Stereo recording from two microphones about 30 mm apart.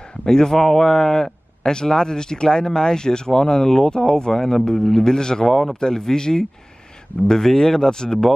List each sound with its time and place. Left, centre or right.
0.2 s speech: left
0.6 s speech: centre
5.5 s speech: centre
5.8 s speech: centre